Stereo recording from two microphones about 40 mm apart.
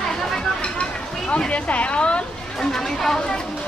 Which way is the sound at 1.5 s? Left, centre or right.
Left.